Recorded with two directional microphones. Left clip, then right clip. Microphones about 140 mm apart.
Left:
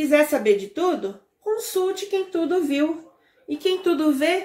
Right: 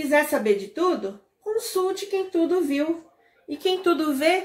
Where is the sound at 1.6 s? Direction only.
20° right (ahead or behind).